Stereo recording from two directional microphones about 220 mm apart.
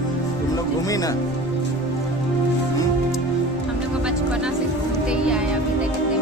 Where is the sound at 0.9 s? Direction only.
15° left (ahead or behind).